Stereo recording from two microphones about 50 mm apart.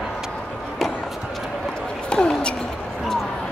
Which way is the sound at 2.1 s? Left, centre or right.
Centre.